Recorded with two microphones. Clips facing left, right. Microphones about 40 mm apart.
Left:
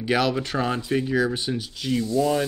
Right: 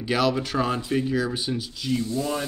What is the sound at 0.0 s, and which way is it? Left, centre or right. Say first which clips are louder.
Speech: left 1 dB; centre.